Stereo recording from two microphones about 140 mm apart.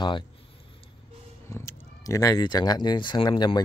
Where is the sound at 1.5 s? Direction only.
20° left (ahead or behind).